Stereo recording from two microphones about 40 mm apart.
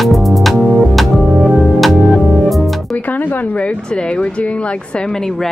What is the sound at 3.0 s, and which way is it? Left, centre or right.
Speech, left.